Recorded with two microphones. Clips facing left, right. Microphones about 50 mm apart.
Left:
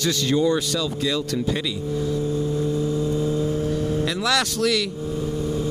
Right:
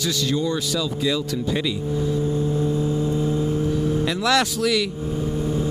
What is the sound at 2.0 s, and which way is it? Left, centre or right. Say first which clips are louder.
Vehicle: right 1 dB; right.